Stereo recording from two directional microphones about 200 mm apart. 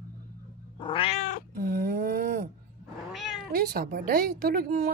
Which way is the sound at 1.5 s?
45° right (ahead or behind).